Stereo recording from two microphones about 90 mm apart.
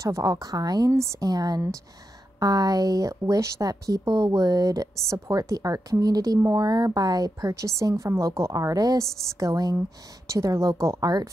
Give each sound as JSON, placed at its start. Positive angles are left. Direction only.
{"t": 0.0, "sound": "speech", "side_deg": -40}